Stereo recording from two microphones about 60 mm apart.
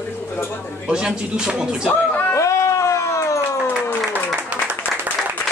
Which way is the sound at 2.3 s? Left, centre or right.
Left.